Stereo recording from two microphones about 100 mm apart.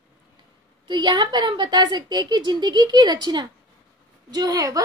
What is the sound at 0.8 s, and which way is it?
A woman's voice, 50° right (ahead or behind).